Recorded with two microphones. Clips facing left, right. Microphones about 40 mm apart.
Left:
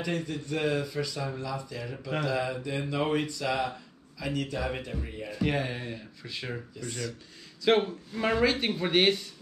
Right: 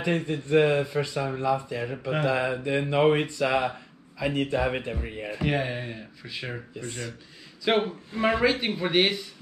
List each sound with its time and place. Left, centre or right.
0.0 s speech: right
5.5 s speech: centre
6.8 s speech: right
7.6 s speech: centre